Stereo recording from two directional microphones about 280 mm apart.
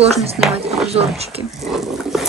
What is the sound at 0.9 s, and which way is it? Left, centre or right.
Speech, right.